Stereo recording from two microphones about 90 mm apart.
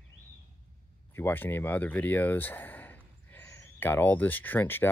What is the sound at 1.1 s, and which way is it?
Speech, 25° left (ahead or behind).